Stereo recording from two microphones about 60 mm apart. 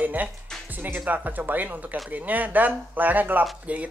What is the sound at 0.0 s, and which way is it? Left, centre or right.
Speech, right.